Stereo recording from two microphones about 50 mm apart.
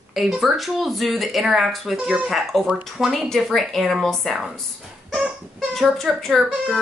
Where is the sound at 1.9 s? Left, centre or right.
Right.